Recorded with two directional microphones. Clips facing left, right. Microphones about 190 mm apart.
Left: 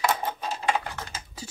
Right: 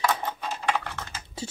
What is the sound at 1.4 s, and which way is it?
Typing, 25° right (ahead or behind).